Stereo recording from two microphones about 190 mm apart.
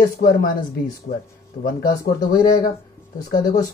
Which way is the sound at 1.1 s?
45° left (ahead or behind).